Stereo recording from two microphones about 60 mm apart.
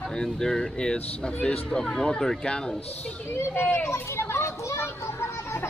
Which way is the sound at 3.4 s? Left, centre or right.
Left.